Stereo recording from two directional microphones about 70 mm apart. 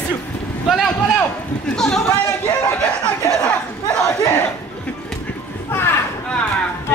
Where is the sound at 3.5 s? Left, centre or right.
Centre.